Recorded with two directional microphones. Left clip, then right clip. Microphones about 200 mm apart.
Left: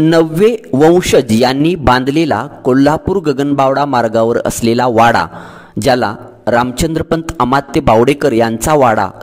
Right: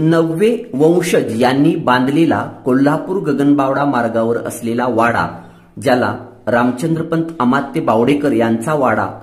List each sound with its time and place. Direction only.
0.1 s a man's voice: 50° left (ahead or behind)